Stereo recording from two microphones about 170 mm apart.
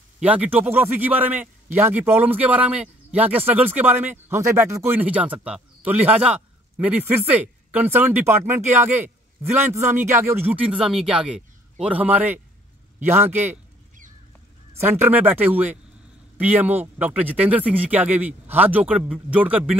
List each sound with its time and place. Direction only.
0.2 s speech: 10° right (ahead or behind)
13.5 s a sound: 50° right (ahead or behind)
15.0 s speech: 10° right (ahead or behind)